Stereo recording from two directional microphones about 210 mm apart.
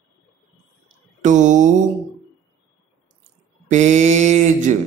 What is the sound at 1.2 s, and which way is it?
Mantra, 35° right (ahead or behind).